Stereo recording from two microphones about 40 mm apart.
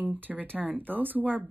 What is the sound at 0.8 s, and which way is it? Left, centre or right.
Speech, right.